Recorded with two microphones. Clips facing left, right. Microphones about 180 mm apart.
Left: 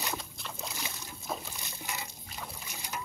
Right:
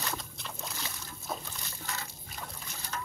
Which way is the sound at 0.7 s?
15° left (ahead or behind).